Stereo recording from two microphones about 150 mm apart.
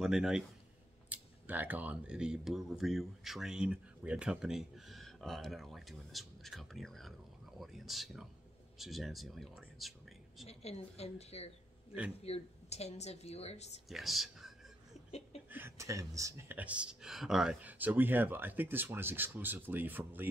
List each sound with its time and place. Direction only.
0.0 s speech: 5° right (ahead or behind)
10.4 s speech: 45° left (ahead or behind)
13.8 s speech: centre (ahead or behind)
15.0 s chuckle: 45° left (ahead or behind)
15.5 s speech: 15° right (ahead or behind)